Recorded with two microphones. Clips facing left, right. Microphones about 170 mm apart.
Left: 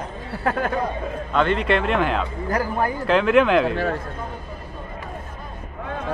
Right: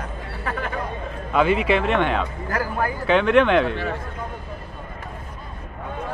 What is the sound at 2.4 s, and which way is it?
Speech, 15° left (ahead or behind).